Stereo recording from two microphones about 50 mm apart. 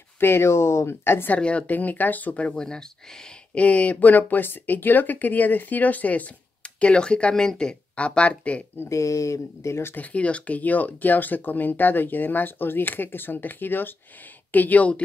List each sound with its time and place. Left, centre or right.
0.2 s speech: left
1.3 s speech: left
2.5 s speech: centre
3.5 s speech: left; by 7.7 s centre
7.9 s speech: left
8.8 s speech: left
9.9 s speech: left